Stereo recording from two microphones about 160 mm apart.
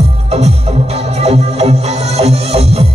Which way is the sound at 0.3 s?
40° right (ahead or behind).